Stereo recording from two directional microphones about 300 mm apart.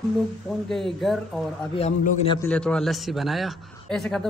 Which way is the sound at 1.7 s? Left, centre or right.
Left.